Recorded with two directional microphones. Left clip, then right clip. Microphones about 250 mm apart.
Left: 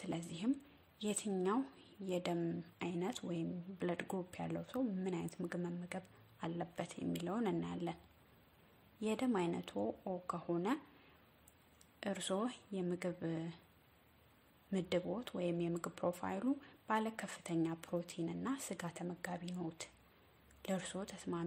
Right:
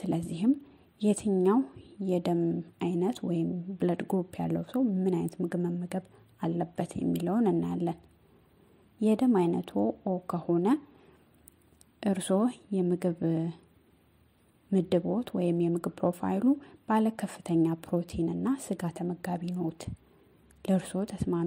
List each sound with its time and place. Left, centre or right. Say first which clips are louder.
0.0 s a sound: right 11 dB; centre
0.9 s speech: right 12 dB; centre
9.0 s speech: right 12 dB; centre
12.0 s speech: right 11 dB; centre
14.7 s speech: right 11 dB; centre